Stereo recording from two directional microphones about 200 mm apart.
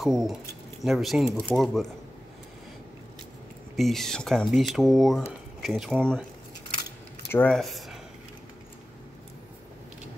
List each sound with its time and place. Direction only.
0.0 s speech: centre (ahead or behind)
3.7 s speech: centre (ahead or behind)
7.2 s speech: 5° left (ahead or behind)